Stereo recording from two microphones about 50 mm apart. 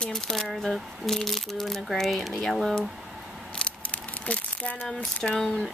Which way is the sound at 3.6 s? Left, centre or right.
Left.